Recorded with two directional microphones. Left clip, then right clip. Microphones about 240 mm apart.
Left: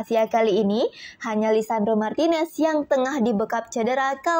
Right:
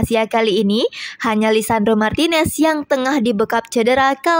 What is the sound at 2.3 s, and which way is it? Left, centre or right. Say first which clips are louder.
Speech: right 5 dB; right.